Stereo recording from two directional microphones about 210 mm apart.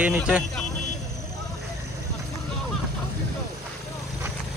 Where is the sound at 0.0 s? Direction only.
5° right (ahead or behind).